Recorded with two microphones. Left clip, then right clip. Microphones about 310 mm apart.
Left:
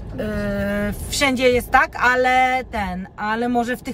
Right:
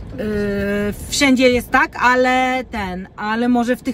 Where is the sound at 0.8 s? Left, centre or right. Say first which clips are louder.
Right 3 dB; centre.